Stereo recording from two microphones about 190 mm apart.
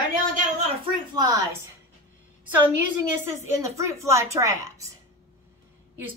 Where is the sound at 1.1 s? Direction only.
20° right (ahead or behind).